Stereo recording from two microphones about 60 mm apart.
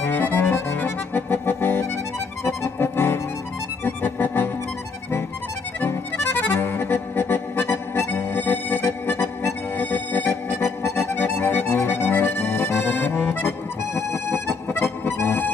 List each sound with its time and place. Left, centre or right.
0.0 s accordion: left
2.4 s music: left
5.9 s accordion: left
11.1 s music: left
11.7 s accordion: left